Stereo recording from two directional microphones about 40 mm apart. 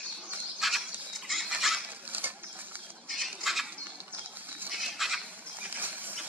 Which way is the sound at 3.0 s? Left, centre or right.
Centre.